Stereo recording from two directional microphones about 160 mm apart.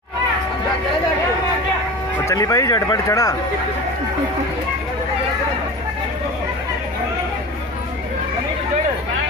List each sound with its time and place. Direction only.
2.1 s speech: 20° left (ahead or behind)